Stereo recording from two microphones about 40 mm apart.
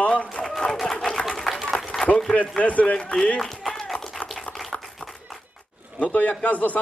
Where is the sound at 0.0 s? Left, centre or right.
Left.